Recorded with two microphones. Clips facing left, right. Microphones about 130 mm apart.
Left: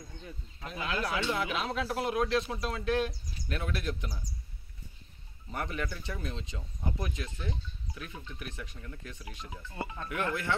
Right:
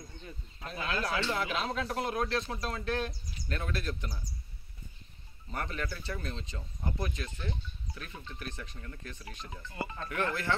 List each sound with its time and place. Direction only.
0.7 s speech: 10° left (ahead or behind)
5.5 s speech: 10° left (ahead or behind)
6.8 s speech: 5° left (ahead or behind)